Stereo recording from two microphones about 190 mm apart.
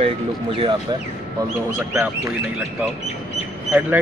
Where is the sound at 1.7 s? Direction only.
10° right (ahead or behind).